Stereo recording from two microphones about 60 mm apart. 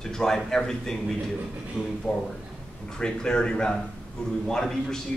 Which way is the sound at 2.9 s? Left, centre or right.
Centre.